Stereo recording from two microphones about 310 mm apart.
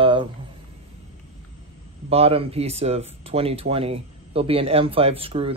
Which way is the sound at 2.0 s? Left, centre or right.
Centre.